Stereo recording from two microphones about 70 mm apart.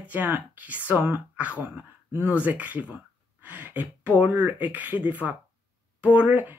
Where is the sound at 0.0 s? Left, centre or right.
Right.